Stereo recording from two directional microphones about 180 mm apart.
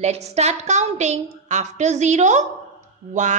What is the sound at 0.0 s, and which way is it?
A woman's voice, 35° right (ahead or behind).